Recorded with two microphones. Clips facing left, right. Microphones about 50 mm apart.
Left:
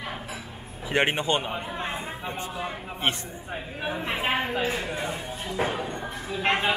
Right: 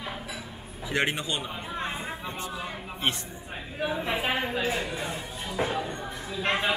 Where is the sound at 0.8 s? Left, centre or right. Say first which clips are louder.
Left 4 dB; left.